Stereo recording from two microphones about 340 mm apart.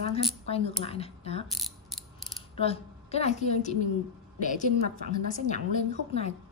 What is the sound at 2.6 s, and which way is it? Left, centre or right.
Speech, centre.